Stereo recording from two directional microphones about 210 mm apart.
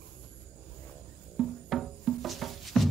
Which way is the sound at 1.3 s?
Centre (ahead or behind).